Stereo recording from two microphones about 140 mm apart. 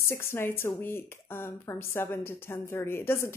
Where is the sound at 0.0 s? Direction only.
20° left (ahead or behind).